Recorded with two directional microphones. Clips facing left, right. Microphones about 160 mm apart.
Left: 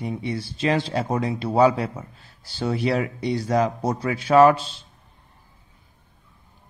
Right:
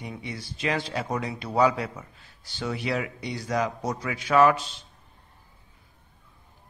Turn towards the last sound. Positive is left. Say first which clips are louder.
# left 5 dB
turn(degrees=30)  # may be behind; listen again after turning